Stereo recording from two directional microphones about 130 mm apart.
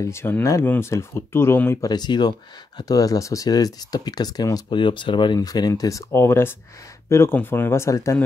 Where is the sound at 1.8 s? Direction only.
35° left (ahead or behind).